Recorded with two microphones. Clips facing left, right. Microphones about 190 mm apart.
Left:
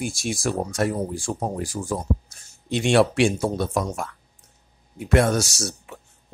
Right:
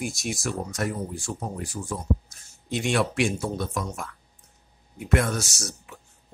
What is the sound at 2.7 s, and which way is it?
Speech, 30° left (ahead or behind).